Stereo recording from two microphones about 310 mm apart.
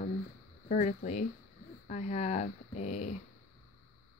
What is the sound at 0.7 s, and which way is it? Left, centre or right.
Speech, left.